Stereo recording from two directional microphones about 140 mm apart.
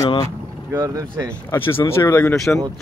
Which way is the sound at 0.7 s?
25° right (ahead or behind).